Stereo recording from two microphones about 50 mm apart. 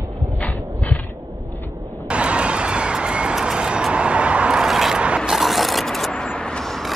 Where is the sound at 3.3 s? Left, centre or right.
Centre.